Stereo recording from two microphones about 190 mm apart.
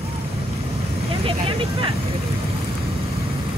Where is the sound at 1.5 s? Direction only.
30° right (ahead or behind).